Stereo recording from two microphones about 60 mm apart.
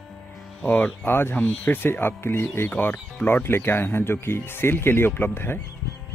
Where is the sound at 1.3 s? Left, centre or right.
Left.